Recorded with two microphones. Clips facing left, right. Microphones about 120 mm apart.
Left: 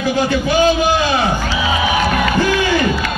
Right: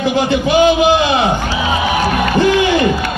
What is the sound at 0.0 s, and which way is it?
A man's voice, 20° right (ahead or behind).